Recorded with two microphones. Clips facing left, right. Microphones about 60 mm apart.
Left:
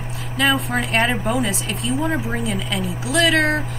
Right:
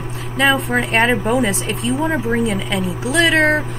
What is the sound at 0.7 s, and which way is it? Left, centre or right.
Speech, right.